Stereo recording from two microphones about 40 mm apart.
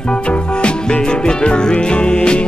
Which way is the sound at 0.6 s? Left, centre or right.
Left.